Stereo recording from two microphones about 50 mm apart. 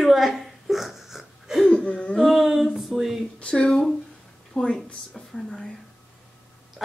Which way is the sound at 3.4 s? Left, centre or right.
Left.